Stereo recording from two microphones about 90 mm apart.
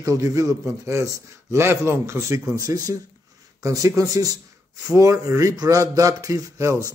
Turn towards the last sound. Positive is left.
turn(degrees=-35)  # may be behind; listen again after turning